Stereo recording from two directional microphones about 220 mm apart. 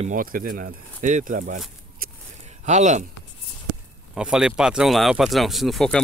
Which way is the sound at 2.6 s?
30° right (ahead or behind).